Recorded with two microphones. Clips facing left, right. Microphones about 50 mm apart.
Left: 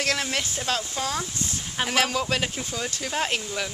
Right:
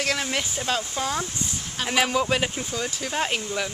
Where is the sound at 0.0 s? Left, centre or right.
Centre.